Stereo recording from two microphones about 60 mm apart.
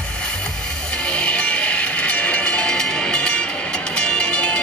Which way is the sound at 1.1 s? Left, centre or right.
Centre.